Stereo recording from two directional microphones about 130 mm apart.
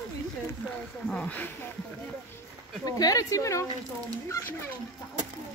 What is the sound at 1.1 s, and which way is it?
Speech, 10° left (ahead or behind).